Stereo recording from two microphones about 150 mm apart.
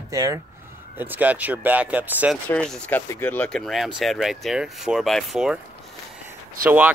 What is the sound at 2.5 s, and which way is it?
Speech, 5° left (ahead or behind).